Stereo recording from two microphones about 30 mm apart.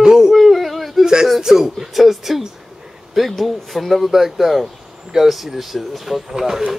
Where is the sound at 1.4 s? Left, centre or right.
Centre.